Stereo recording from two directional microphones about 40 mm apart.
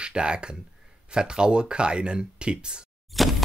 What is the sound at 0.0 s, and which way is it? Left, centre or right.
Speech, right.